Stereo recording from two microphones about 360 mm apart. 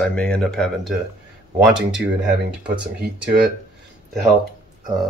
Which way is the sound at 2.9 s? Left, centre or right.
Right.